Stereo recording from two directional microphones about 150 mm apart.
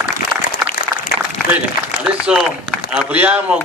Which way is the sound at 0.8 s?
90° left.